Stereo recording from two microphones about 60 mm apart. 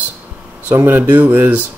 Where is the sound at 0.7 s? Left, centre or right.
Right.